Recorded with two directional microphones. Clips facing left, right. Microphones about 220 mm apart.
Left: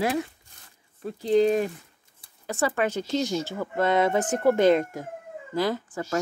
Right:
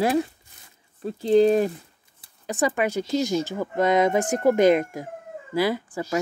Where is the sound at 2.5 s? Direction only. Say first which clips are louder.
Right 2 dB; 15° right (ahead or behind).